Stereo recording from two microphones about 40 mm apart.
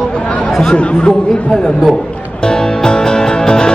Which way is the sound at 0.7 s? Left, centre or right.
Left.